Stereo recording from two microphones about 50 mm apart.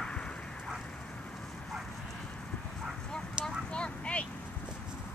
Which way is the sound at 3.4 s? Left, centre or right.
Centre.